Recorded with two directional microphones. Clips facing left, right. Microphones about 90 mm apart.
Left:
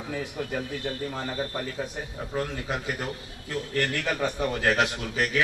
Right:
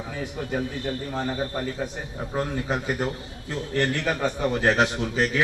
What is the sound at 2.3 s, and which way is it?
A man's voice, 25° right (ahead or behind).